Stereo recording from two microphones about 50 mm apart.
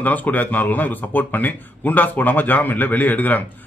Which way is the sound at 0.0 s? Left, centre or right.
Left.